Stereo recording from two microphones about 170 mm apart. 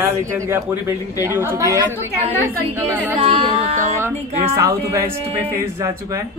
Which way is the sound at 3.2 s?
35° right (ahead or behind).